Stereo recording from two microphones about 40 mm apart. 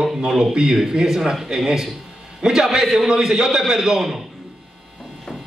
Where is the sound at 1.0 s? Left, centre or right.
Centre.